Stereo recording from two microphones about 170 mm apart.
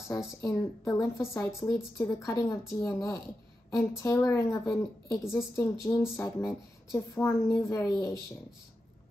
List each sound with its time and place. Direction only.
0.4 s a woman's voice: 20° left (ahead or behind)